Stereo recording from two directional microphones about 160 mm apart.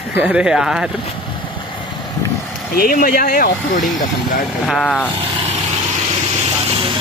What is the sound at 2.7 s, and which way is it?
Speech, 65° left (ahead or behind).